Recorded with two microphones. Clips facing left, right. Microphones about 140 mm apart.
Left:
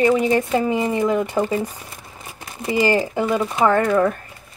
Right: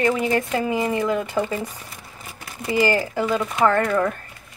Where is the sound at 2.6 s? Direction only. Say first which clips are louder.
Left 2 dB; 20° left (ahead or behind).